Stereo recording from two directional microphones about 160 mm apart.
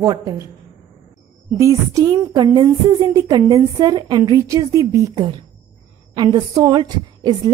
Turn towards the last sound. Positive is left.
turn(degrees=-25)  # may be behind; listen again after turning